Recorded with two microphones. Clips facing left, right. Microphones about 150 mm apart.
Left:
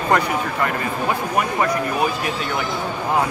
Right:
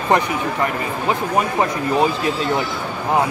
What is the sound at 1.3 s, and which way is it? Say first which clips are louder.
Speech: even; 25° right (ahead or behind).